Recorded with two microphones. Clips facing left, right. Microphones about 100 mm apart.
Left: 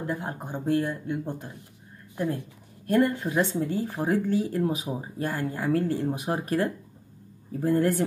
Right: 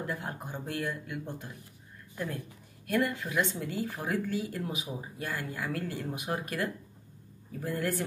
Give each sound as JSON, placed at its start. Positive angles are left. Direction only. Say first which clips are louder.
{"t": 0.0, "sound": "speech", "louder": "left 5 dB", "side_deg": 25}